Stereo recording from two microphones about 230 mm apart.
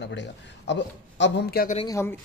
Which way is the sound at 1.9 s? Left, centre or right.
Centre.